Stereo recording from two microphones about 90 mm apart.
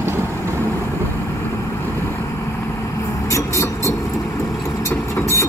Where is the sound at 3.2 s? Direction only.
35° left (ahead or behind).